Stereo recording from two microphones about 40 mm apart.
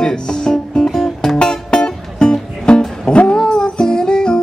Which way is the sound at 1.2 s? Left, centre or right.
Centre.